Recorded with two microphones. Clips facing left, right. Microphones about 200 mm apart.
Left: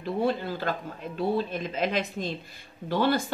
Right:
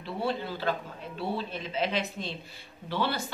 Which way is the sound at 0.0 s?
45° left (ahead or behind).